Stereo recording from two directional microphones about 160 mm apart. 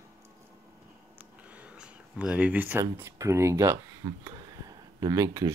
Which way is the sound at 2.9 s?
15° right (ahead or behind).